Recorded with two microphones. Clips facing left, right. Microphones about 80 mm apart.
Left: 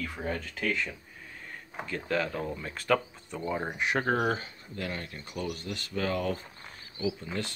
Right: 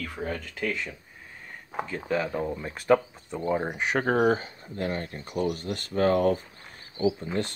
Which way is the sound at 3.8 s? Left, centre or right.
Right.